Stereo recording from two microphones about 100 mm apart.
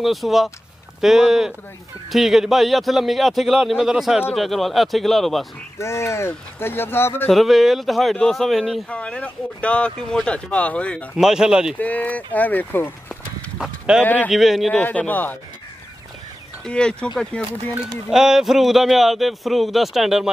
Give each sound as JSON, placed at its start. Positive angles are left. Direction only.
{"t": 0.0, "sound": "a man's voice", "side_deg": 0}
{"t": 5.8, "sound": "speech", "side_deg": 30}
{"t": 7.2, "sound": "a man's voice", "side_deg": 0}
{"t": 8.8, "sound": "speech", "side_deg": 10}
{"t": 11.1, "sound": "a man's voice", "side_deg": -5}
{"t": 11.8, "sound": "speech", "side_deg": 15}
{"t": 13.6, "sound": "speech", "side_deg": -10}
{"t": 14.0, "sound": "speech", "side_deg": 15}
{"t": 14.3, "sound": "a man's voice", "side_deg": 0}
{"t": 14.7, "sound": "speech", "side_deg": 15}
{"t": 16.6, "sound": "speech", "side_deg": 10}
{"t": 18.1, "sound": "a man's voice", "side_deg": -5}